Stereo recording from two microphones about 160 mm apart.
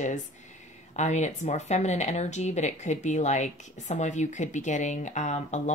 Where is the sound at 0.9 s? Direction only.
45° left (ahead or behind).